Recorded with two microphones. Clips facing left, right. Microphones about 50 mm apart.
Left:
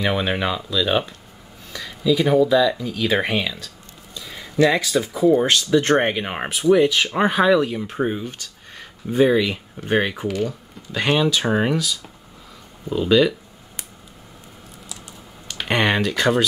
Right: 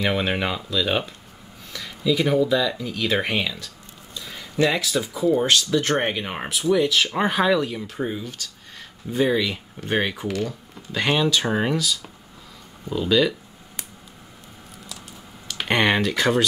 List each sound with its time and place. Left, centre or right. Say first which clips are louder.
0.0 s speech: left 1 dB; centre
5.5 s speech: left 3 dB; centre
7.2 s speech: left 5 dB; centre
7.8 s speech: left 4 dB; left; by 13.3 s centre
15.5 s speech: even; centre